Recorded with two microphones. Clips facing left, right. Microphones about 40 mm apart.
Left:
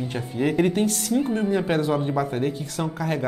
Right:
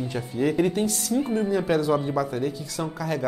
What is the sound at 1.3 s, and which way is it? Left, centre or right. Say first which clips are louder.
Speech: even; left.